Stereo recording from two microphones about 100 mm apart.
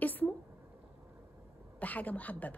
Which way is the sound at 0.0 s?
15° left (ahead or behind).